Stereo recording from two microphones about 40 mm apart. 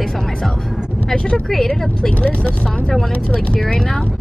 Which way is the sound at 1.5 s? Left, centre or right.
Centre.